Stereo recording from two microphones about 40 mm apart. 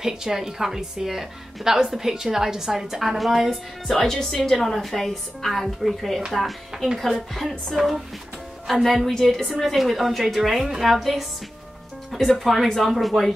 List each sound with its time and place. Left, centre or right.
0.0 s speech: centre
4.1 s a woman's voice: centre